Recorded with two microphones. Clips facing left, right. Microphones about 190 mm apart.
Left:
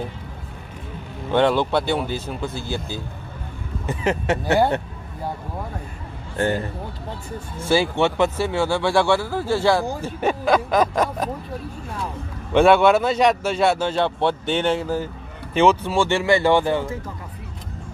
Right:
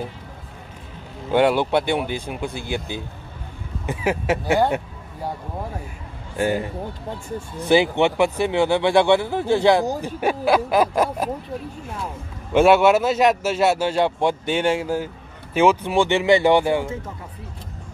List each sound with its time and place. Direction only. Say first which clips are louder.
1.3 s a man's voice: right 1 dB; 10° right (ahead or behind)
6.3 s a man's voice: right 1 dB; 10° right (ahead or behind)
10.0 s a man's voice: even; 10° right (ahead or behind)
12.5 s a man's voice: even; 5° right (ahead or behind)